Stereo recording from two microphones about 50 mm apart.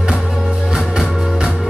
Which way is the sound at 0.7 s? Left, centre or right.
Centre.